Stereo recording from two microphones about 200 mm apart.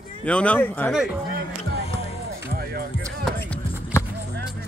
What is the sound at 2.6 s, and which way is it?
Music, 50° right (ahead or behind).